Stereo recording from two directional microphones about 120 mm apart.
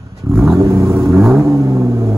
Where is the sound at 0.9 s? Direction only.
Centre (ahead or behind).